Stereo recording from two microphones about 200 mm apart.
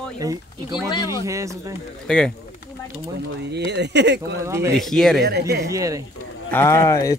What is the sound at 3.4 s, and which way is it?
Speech, 55° right (ahead or behind).